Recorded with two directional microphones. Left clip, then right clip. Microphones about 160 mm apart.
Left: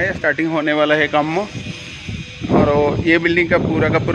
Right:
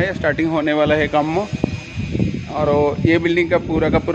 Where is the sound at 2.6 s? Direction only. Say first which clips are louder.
Right 2 dB; centre (ahead or behind).